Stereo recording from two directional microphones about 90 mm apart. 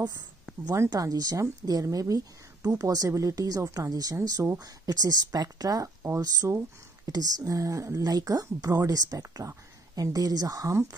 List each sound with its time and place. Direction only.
0.8 s speech: 45° right (ahead or behind)